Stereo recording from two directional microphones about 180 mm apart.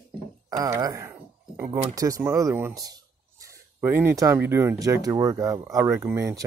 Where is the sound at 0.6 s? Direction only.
20° right (ahead or behind).